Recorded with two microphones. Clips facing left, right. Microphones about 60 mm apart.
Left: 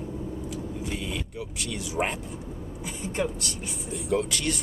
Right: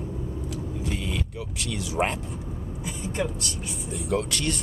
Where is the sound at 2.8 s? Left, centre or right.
Left.